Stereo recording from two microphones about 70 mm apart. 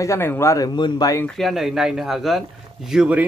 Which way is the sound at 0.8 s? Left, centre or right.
Left.